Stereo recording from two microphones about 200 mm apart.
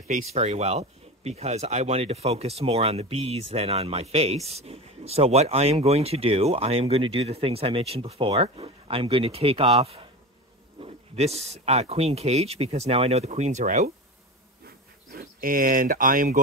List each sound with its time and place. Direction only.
0.3 s speech: 35° right (ahead or behind)
15.1 s speech: 45° right (ahead or behind)